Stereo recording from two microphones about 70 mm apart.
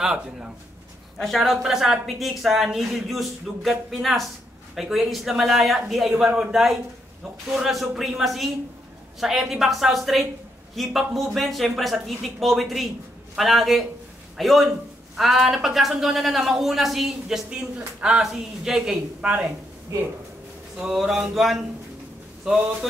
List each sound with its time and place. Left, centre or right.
0.0 s speech: centre
1.1 s a woman's voice: centre
19.9 s speech: right
20.7 s a woman's voice: centre